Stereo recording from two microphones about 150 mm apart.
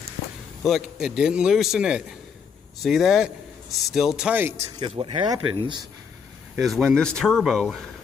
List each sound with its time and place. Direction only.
0.7 s a man's voice: centre (ahead or behind)
4.7 s speech: 35° right (ahead or behind)
6.6 s a man's voice: centre (ahead or behind)